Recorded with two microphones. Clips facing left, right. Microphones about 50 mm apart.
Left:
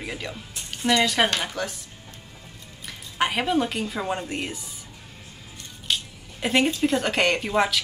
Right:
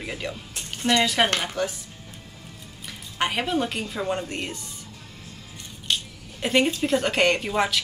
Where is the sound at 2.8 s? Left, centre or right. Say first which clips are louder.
Left 2 dB; centre.